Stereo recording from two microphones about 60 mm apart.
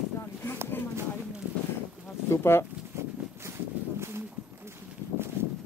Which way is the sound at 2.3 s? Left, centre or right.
Left.